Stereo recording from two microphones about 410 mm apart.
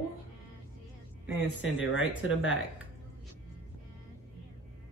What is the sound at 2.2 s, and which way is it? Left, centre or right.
Speech, left.